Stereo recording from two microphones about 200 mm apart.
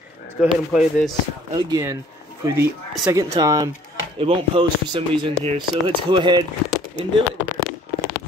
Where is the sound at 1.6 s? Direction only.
20° right (ahead or behind).